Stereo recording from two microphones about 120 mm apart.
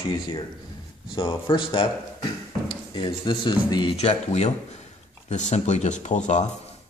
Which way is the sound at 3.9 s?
65° left (ahead or behind).